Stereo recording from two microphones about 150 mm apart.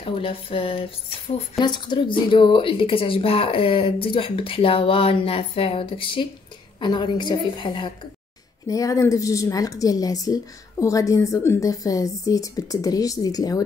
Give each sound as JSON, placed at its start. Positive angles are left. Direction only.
{"t": 0.0, "sound": "a woman's voice", "side_deg": 35}